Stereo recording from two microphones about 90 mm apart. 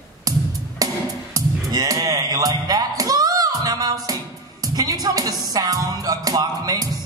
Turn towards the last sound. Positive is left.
turn(degrees=-45)  # may be behind; listen again after turning